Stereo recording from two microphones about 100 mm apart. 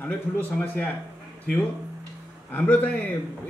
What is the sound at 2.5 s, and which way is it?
Speech, 15° left (ahead or behind).